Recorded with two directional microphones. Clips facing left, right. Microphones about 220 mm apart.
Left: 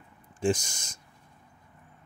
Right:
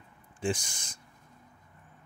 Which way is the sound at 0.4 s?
40° left (ahead or behind).